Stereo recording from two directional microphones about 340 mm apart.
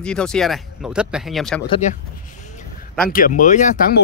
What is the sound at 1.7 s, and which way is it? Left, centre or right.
Speech, left.